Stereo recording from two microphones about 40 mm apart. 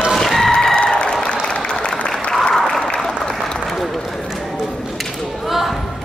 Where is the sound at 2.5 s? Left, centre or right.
Centre.